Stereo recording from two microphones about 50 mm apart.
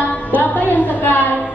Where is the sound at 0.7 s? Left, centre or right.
Left.